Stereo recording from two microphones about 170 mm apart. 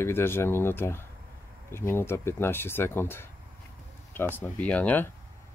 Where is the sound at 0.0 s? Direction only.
15° left (ahead or behind).